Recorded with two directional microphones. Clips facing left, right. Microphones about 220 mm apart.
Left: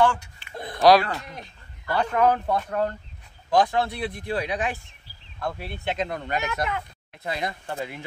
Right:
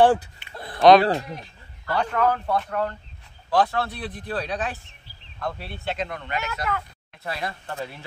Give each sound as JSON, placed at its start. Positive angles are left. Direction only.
{"t": 0.0, "sound": "speech", "side_deg": -35}
{"t": 0.5, "sound": "a sound", "side_deg": 20}
{"t": 1.0, "sound": "speech", "side_deg": -30}
{"t": 1.9, "sound": "speech", "side_deg": 10}
{"t": 3.4, "sound": "speech", "side_deg": 15}
{"t": 6.0, "sound": "speech", "side_deg": 35}
{"t": 7.2, "sound": "speech", "side_deg": 20}